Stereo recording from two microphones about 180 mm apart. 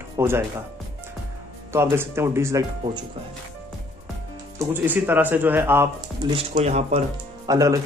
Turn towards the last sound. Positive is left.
turn(degrees=-20)  # may be behind; listen again after turning